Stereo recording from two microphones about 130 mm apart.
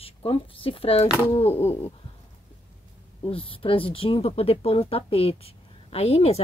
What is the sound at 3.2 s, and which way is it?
Speech, 45° left (ahead or behind).